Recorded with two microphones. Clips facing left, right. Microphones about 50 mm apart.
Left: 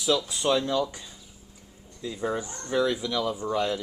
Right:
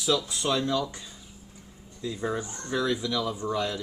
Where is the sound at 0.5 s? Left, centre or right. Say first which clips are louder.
Left 1 dB; centre.